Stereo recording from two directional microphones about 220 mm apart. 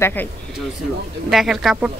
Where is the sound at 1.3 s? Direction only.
Centre (ahead or behind).